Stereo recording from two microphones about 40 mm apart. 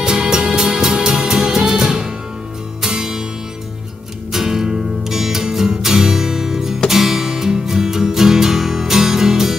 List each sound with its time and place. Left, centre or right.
0.0 s music: centre
4.3 s music: centre